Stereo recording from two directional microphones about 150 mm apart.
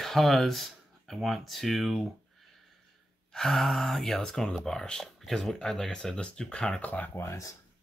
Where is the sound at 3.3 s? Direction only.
Centre (ahead or behind); by 7.5 s 20° left (ahead or behind).